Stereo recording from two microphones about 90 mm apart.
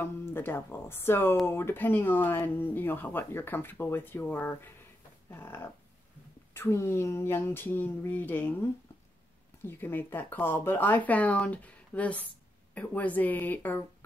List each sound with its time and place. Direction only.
0.0 s speech: 25° left (ahead or behind)
9.7 s speech: 20° left (ahead or behind)